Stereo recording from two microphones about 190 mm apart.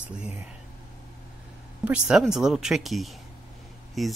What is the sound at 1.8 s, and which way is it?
Speech, 5° right (ahead or behind).